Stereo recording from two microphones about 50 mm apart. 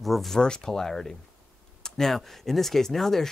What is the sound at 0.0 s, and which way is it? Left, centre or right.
Speech, centre.